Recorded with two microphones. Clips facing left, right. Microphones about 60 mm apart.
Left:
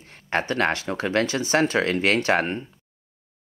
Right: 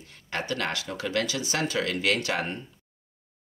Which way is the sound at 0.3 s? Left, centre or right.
Left.